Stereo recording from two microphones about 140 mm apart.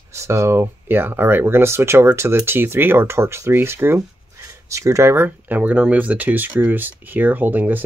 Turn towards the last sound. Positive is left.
turn(degrees=-15)  # may be behind; listen again after turning